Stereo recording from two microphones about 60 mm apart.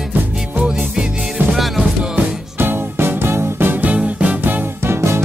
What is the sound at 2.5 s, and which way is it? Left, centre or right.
Music, right.